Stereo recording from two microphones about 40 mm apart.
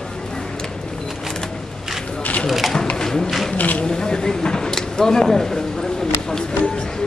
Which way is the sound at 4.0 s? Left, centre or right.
Centre.